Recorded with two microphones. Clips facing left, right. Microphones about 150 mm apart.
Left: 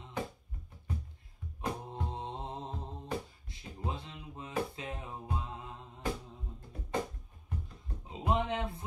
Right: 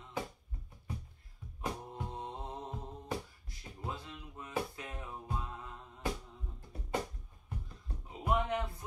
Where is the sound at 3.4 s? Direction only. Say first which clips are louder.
Left 3 dB; 25° left (ahead or behind).